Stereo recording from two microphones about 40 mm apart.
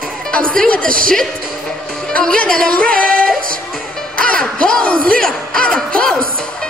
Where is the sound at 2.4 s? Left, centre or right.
Centre.